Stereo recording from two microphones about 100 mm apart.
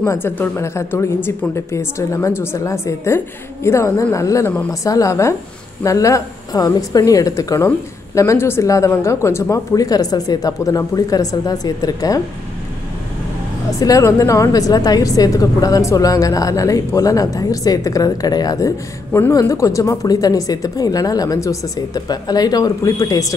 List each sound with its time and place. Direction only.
0.0 s a woman's voice: 20° left (ahead or behind); by 12.2 s 35° left (ahead or behind)
13.7 s a woman's voice: 35° left (ahead or behind)